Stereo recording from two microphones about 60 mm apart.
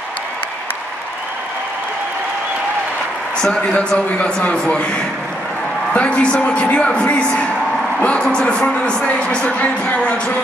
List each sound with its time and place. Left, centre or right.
3.3 s a man's voice: centre
5.9 s a man's voice: centre